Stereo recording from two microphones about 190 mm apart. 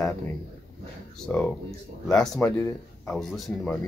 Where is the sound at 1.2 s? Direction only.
5° left (ahead or behind).